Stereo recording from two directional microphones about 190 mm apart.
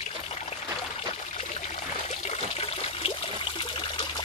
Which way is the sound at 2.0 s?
35° left (ahead or behind).